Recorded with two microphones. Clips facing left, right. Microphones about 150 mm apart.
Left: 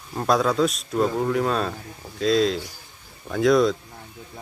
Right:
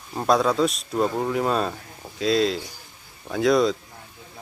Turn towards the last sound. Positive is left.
turn(degrees=0)  # may be behind; listen again after turning